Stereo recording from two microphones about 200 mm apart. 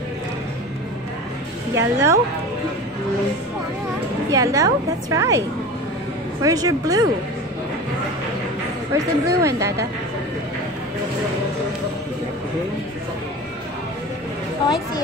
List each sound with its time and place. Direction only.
1.8 s a woman's voice: 15° right (ahead or behind)
4.3 s a woman's voice: 15° right (ahead or behind)
6.4 s a woman's voice: 20° right (ahead or behind)
8.9 s a woman's voice: 15° right (ahead or behind)